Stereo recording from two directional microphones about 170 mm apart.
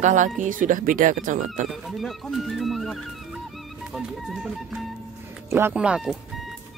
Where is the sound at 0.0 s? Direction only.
45° right (ahead or behind).